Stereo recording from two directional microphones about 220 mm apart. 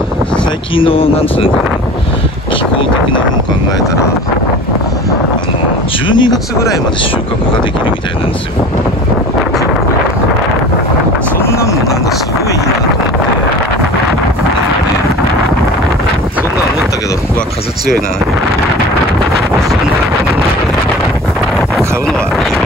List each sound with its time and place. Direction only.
0.7 s speech: 25° left (ahead or behind)
6.0 s speech: 20° left (ahead or behind)
11.4 s a sound: 15° left (ahead or behind)